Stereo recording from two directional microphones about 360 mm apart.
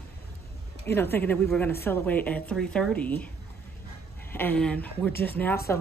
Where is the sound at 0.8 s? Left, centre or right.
Centre.